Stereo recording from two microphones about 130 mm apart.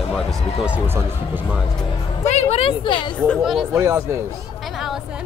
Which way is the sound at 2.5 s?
45° left (ahead or behind).